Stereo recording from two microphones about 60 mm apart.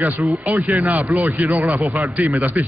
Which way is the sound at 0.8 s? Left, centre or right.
Right.